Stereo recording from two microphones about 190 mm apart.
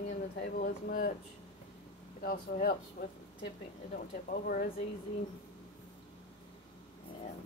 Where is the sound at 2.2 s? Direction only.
50° left (ahead or behind).